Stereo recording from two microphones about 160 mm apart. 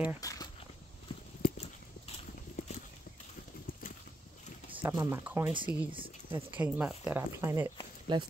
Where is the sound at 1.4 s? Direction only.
45° left (ahead or behind).